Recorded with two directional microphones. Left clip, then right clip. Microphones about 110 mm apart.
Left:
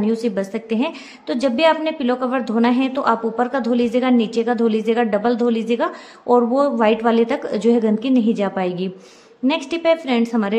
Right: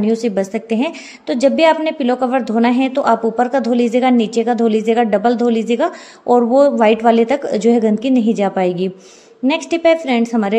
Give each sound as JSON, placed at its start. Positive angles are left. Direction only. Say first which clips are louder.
{"t": 0.0, "sound": "a woman's voice", "louder": "right 4 dB", "side_deg": -30}